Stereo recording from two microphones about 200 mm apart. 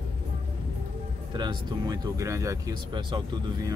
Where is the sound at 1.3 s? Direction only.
20° right (ahead or behind).